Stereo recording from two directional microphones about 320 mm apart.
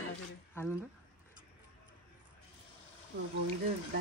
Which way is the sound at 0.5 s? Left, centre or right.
Centre.